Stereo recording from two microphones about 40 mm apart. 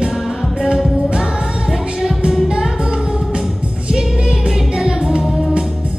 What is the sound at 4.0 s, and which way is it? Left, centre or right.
Music, centre.